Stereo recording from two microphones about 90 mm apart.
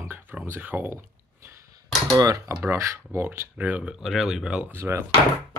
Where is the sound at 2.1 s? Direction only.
40° right (ahead or behind).